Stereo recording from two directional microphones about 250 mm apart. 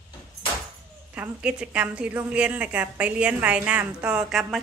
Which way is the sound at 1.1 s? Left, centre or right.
Centre.